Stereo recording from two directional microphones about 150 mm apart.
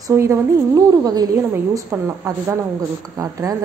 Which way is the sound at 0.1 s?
20° right (ahead or behind).